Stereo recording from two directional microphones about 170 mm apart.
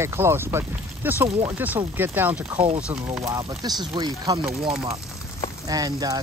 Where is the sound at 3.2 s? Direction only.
20° right (ahead or behind).